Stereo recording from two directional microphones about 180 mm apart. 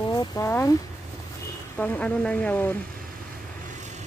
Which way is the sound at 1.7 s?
10° left (ahead or behind).